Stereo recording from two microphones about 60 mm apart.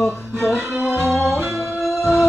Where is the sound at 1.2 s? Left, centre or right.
Right.